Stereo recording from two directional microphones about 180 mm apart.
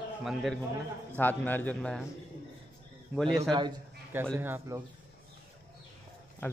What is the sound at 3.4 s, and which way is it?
Speech, 25° right (ahead or behind).